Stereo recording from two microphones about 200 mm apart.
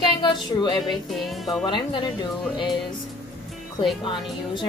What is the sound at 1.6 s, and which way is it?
Speech, 25° left (ahead or behind).